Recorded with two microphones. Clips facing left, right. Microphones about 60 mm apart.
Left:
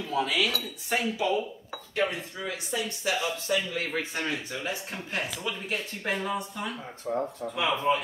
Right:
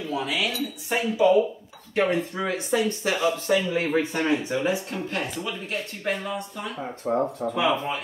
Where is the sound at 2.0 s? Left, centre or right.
Right.